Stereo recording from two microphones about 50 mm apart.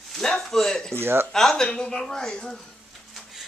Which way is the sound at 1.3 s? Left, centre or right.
Centre.